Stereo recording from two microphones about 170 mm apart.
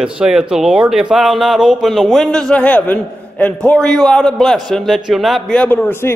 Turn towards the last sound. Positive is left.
turn(degrees=15)  # may be behind; listen again after turning